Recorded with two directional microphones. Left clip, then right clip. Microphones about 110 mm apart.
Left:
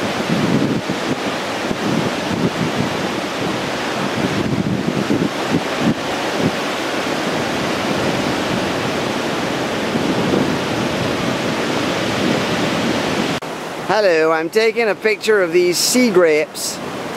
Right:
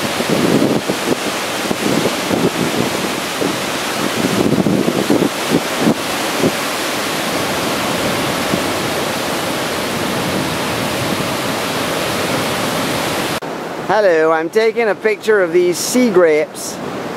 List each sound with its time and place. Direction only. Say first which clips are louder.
13.8 s speech: right 2 dB; 30° left (ahead or behind)